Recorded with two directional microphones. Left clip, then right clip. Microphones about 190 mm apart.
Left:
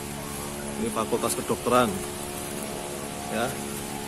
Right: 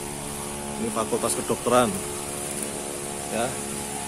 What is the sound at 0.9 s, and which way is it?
Speech, 10° right (ahead or behind).